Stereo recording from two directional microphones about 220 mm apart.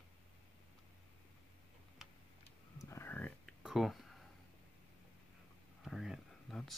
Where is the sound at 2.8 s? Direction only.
10° left (ahead or behind).